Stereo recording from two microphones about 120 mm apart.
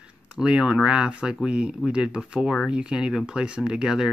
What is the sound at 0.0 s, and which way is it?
Speech, 10° right (ahead or behind).